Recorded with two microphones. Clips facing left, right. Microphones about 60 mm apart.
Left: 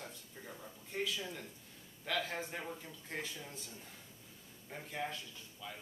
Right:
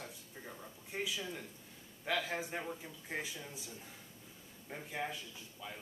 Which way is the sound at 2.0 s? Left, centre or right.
Centre.